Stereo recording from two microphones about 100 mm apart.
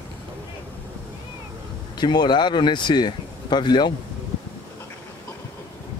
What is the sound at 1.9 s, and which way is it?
Speech, 50° left (ahead or behind).